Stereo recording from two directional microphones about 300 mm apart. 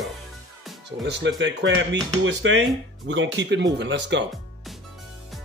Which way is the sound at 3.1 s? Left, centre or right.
Right.